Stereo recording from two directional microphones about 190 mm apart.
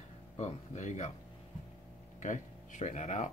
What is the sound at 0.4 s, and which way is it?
Speech, 40° left (ahead or behind).